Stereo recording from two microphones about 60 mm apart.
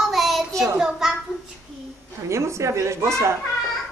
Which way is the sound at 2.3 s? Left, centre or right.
Right.